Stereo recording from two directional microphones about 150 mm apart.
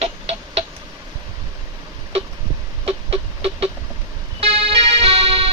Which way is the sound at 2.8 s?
40° right (ahead or behind).